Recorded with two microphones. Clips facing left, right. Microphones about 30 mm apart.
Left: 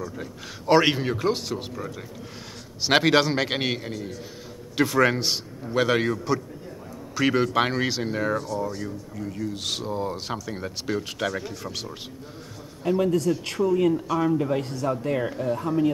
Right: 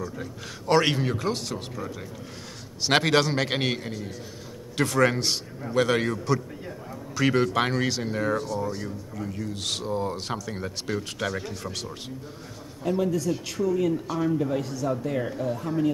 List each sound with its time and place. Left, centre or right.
0.0 s a man's voice: centre